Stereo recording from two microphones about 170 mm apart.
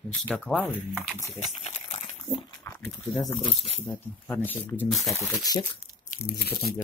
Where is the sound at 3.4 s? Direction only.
35° left (ahead or behind).